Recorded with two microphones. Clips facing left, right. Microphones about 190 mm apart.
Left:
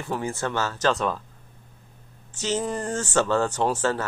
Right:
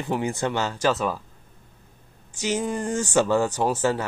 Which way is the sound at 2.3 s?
10° right (ahead or behind).